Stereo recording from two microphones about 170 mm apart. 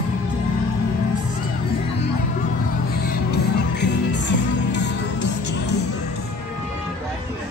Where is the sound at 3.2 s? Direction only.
90° left.